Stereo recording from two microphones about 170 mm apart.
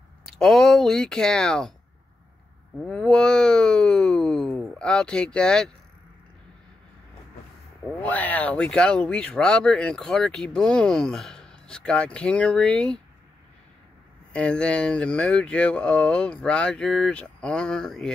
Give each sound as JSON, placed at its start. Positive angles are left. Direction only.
{"t": 0.4, "sound": "speech", "side_deg": 5}
{"t": 2.9, "sound": "speech", "side_deg": 5}
{"t": 8.0, "sound": "speech", "side_deg": 10}
{"t": 14.3, "sound": "speech", "side_deg": 5}